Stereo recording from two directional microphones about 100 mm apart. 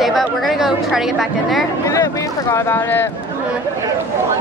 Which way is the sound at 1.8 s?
35° left (ahead or behind).